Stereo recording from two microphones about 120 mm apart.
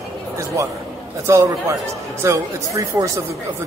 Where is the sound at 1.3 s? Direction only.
25° right (ahead or behind).